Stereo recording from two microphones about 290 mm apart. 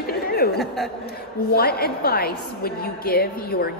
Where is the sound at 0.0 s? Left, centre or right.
Left.